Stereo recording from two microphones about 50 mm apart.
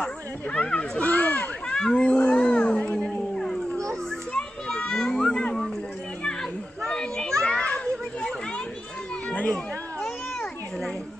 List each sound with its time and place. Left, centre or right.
0.0 s a sound: left
1.7 s speech: centre
2.1 s wild animals: left
3.3 s children playing: centre
6.8 s children playing: centre
9.3 s a sound: left